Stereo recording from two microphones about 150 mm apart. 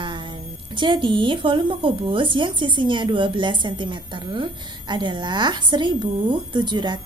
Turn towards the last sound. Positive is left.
turn(degrees=-30)  # may be behind; listen again after turning